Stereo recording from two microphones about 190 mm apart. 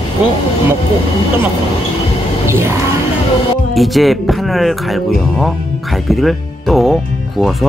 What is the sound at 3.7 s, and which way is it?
Speech, centre (ahead or behind).